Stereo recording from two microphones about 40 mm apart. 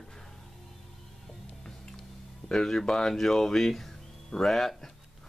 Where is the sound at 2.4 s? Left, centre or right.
Centre.